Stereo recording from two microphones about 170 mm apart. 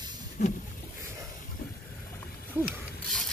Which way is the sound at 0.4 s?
45° left (ahead or behind).